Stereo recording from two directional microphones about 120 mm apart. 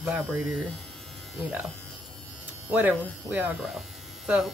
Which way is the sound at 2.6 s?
15° right (ahead or behind).